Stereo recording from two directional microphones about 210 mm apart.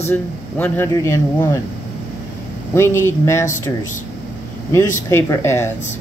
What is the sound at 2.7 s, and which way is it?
Speech, 10° left (ahead or behind).